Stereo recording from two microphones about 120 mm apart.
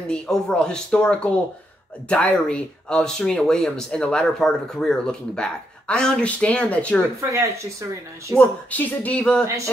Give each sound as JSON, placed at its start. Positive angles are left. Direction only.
{"t": 0.1, "sound": "speech", "side_deg": 5}
{"t": 7.2, "sound": "speech", "side_deg": -25}
{"t": 8.4, "sound": "speech", "side_deg": 10}